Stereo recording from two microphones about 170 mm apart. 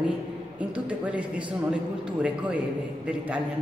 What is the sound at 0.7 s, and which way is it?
Speech, 5° right (ahead or behind).